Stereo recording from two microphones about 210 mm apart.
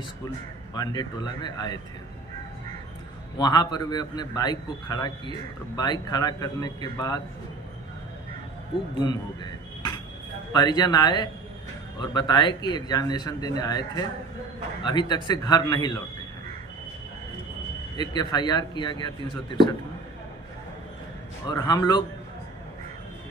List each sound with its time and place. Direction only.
0.7 s speech: 20° left (ahead or behind)
3.3 s speech: 20° left (ahead or behind)
8.9 s a sound: 20° left (ahead or behind)
10.5 s speech: 20° left (ahead or behind)
17.9 s speech: 20° left (ahead or behind)
21.5 s speech: 20° left (ahead or behind)